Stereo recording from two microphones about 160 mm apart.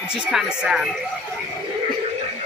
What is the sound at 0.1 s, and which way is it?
Speech, 5° right (ahead or behind).